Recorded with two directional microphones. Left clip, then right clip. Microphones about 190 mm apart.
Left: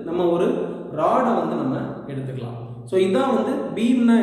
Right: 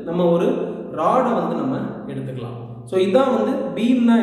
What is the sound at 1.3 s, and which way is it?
Speech, centre (ahead or behind).